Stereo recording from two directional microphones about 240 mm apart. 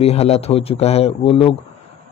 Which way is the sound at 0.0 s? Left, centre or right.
Left.